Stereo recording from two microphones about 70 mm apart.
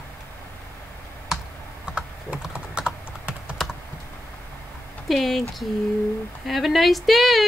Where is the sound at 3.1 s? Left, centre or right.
Centre.